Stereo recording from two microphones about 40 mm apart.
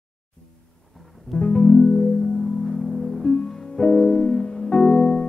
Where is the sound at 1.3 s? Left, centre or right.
Centre.